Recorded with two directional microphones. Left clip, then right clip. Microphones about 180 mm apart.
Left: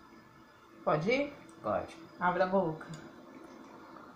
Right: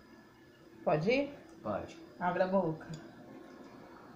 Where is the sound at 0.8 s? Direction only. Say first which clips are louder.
Even; 30° right (ahead or behind).